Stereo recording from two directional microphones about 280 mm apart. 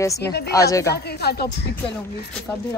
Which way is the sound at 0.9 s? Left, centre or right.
Left.